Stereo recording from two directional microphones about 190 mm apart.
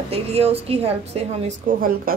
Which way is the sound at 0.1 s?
30° right (ahead or behind).